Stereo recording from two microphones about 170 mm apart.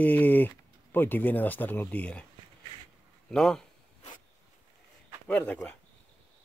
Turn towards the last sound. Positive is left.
turn(degrees=5)  # may be behind; listen again after turning